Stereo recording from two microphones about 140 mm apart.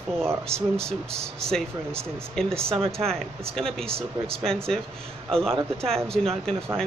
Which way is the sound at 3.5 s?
5° left (ahead or behind).